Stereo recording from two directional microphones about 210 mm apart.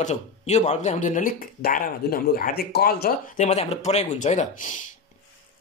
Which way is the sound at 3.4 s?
30° left (ahead or behind).